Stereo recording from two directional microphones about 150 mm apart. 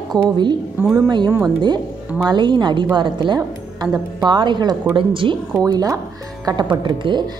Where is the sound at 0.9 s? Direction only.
25° right (ahead or behind).